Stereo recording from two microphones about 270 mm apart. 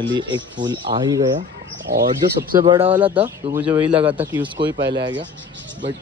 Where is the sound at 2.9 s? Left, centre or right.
Centre.